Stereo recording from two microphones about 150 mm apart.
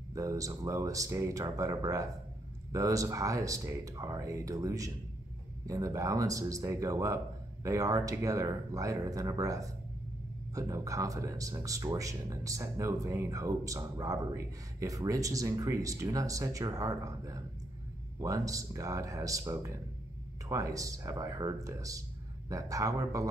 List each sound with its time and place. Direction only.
0.1 s speech: 20° right (ahead or behind)